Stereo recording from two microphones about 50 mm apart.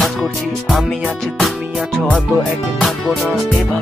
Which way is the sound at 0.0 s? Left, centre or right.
Centre.